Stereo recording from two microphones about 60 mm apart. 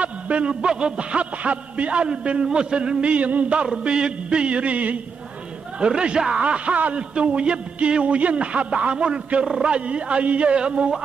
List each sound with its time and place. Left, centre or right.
0.0 s a man's voice: right
3.6 s a man's voice: centre